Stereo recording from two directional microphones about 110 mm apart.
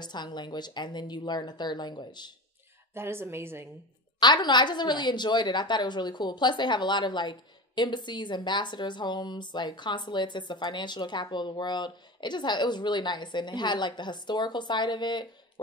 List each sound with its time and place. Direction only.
0.0 s speech: 40° left (ahead or behind)
2.9 s a woman's voice: 20° right (ahead or behind)
4.2 s a woman's voice: 45° left (ahead or behind)